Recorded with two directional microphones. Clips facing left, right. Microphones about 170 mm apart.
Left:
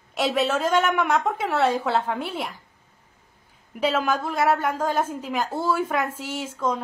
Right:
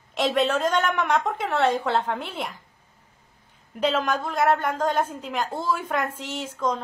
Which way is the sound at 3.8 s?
5° left (ahead or behind).